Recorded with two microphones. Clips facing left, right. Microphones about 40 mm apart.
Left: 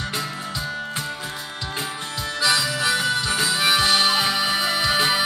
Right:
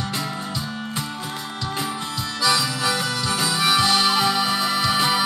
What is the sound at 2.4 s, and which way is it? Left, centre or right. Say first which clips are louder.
Music: even; left.